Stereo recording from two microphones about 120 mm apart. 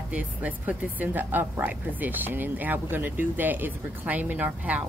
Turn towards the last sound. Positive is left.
turn(degrees=-15)  # may be behind; listen again after turning